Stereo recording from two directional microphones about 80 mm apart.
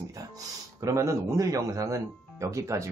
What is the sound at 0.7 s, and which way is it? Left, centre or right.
Speech, right.